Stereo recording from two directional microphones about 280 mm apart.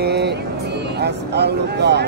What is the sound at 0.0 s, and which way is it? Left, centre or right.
Music, right.